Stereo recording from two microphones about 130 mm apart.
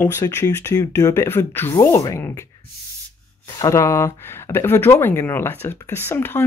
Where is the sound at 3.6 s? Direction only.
25° left (ahead or behind).